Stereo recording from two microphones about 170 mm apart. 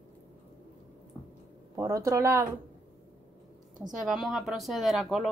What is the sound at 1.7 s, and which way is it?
Speech, 15° right (ahead or behind).